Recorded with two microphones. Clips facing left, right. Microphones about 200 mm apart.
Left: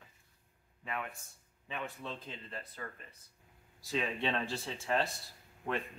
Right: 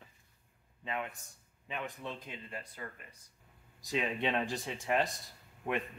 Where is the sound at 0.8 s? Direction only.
20° right (ahead or behind).